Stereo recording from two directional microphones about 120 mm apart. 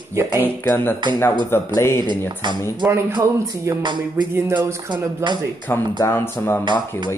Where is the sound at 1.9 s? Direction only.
40° right (ahead or behind).